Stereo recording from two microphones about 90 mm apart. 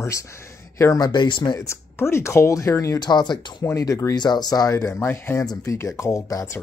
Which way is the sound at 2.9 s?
50° left (ahead or behind).